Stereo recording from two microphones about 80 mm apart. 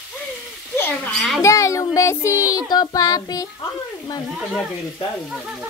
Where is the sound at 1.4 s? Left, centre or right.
Left.